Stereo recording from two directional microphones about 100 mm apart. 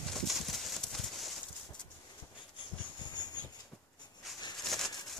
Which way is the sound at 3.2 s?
45° left (ahead or behind).